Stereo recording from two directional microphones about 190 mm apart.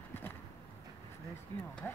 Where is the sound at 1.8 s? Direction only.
10° left (ahead or behind).